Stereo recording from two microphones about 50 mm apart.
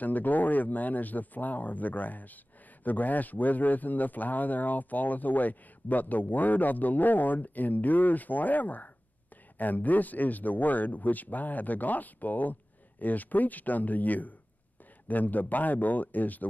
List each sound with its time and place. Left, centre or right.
0.0 s speech: left